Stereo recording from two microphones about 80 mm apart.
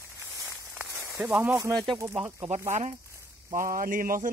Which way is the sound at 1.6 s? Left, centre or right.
Right.